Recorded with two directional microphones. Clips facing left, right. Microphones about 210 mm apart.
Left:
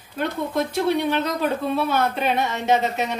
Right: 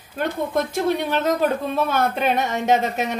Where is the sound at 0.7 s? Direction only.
45° right (ahead or behind).